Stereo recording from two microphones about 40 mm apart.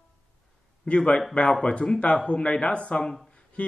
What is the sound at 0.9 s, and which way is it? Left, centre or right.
A man's voice, left.